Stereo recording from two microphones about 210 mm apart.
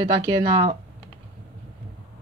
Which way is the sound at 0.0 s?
20° right (ahead or behind).